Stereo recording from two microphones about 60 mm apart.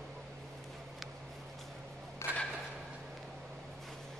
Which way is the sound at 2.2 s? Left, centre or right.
Left.